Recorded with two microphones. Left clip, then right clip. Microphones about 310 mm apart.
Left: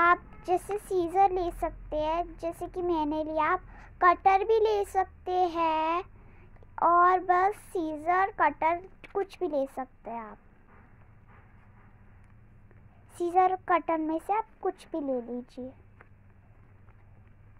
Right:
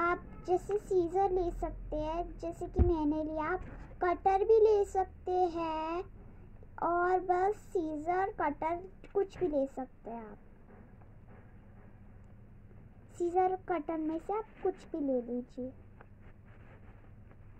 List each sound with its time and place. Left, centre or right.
0.0 s a sound: left
0.8 s a child's voice: left
13.1 s a child's voice: left